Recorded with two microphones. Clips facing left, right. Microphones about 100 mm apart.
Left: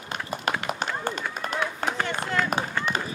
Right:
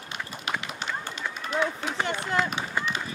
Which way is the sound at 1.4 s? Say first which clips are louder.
Right 1 dB; 50° left (ahead or behind).